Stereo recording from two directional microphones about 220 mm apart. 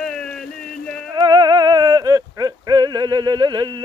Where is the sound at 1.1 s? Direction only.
20° right (ahead or behind).